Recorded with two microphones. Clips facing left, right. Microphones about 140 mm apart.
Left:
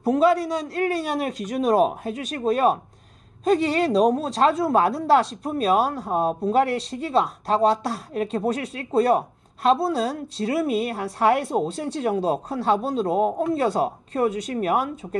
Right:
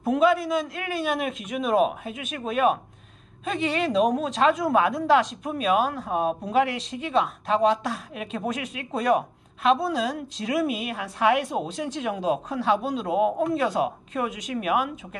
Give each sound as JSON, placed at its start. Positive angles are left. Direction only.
{"t": 0.0, "sound": "speech", "side_deg": 35}